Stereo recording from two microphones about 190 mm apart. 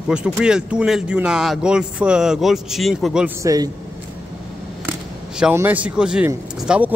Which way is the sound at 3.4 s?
20° right (ahead or behind).